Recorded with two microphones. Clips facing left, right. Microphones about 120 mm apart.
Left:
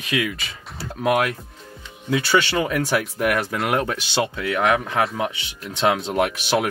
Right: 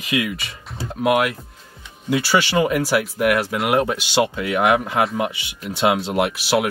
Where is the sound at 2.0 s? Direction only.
10° right (ahead or behind).